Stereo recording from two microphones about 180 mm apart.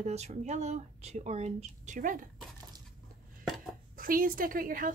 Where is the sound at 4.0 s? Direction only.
50° right (ahead or behind).